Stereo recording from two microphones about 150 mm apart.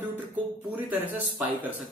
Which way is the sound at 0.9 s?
10° right (ahead or behind).